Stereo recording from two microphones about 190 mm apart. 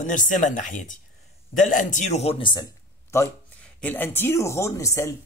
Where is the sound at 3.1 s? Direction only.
10° left (ahead or behind).